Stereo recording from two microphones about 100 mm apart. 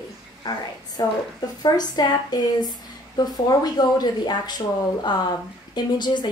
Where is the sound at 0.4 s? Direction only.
40° left (ahead or behind).